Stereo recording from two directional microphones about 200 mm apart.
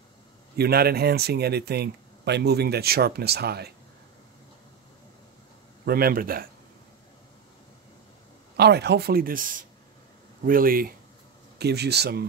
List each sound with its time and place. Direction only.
0.6 s speech: 50° right (ahead or behind)
5.9 s speech: 50° right (ahead or behind)
8.5 s speech: 55° right (ahead or behind)